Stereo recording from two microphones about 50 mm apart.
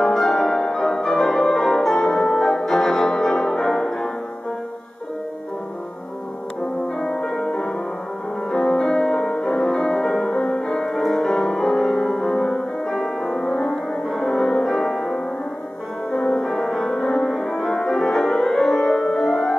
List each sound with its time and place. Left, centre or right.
0.0 s music: centre
7.0 s music: centre
8.5 s music: centre
10.3 s music: left
10.7 s music: centre